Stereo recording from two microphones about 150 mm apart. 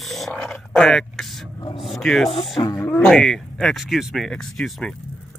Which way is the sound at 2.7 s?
10° left (ahead or behind).